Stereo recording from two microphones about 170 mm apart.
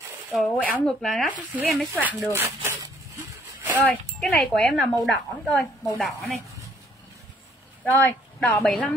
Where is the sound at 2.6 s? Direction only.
15° right (ahead or behind).